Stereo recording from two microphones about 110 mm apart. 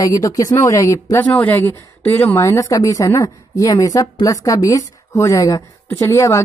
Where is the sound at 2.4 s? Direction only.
30° left (ahead or behind).